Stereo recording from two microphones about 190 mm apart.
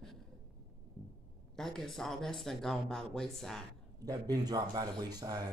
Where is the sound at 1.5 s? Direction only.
5° left (ahead or behind).